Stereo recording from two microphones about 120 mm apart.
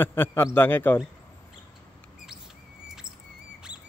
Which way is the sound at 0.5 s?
15° left (ahead or behind).